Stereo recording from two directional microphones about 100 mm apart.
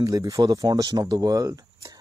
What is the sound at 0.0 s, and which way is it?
Speech, 35° right (ahead or behind).